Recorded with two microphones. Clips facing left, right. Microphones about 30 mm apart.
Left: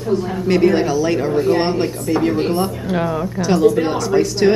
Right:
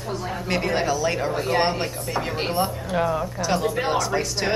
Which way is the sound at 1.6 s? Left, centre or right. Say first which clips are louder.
Left 5 dB; centre.